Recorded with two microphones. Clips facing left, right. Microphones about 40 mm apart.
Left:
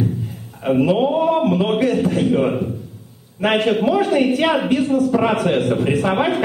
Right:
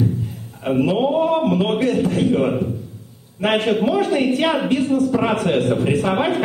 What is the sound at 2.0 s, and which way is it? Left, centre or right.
Speech, left.